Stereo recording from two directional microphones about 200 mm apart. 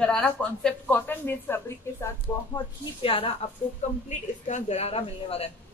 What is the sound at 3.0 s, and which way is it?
A woman's voice, 25° left (ahead or behind).